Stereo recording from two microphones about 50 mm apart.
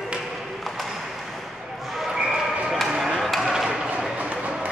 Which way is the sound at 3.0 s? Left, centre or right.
Centre.